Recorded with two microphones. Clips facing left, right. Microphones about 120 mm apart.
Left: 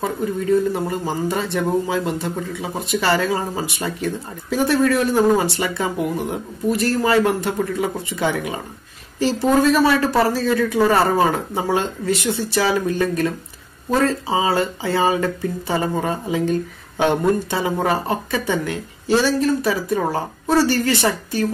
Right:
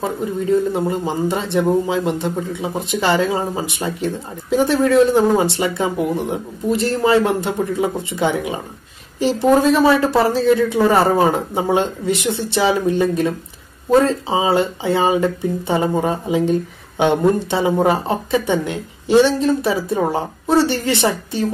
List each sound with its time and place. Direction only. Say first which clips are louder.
0.0 s speech: right 1 dB; 20° right (ahead or behind)